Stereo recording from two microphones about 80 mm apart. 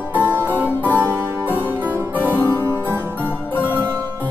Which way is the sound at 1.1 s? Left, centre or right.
Right.